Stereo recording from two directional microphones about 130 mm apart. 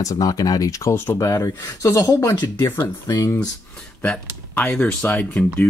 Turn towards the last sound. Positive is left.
turn(degrees=10)  # may be behind; listen again after turning